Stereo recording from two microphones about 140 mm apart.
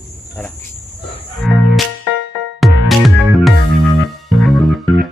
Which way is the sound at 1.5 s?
5° right (ahead or behind).